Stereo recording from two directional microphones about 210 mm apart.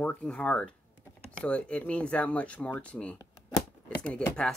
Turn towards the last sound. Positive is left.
turn(degrees=5)  # may be behind; listen again after turning